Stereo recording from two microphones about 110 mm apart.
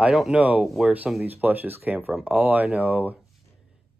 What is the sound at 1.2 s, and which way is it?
Speech, 15° right (ahead or behind).